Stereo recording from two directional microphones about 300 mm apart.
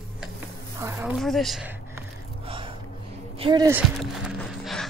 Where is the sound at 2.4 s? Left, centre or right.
Centre.